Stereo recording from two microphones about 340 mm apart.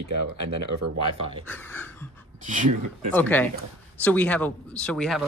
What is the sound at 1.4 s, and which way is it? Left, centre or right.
Speech, centre.